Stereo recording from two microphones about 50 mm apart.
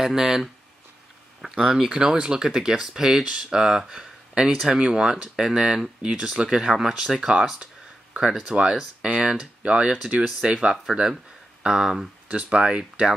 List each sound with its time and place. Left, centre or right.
0.0 s speech: centre